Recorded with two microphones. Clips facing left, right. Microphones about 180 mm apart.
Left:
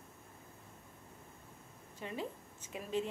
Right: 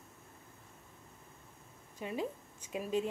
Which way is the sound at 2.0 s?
15° right (ahead or behind).